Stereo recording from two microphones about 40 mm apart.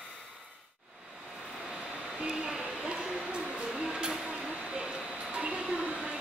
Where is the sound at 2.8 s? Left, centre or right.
Right.